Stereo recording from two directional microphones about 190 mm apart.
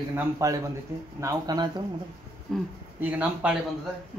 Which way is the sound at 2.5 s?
5° left (ahead or behind).